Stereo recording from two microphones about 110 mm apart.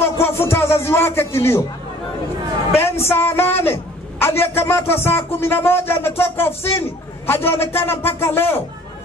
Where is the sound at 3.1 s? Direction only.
20° left (ahead or behind).